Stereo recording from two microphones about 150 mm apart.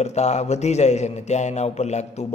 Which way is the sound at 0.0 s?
50° left (ahead or behind).